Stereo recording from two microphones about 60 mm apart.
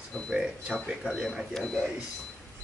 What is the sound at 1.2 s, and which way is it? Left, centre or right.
Speech, centre.